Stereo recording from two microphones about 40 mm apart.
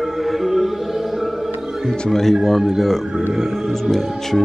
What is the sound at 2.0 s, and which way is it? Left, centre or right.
Speech, centre.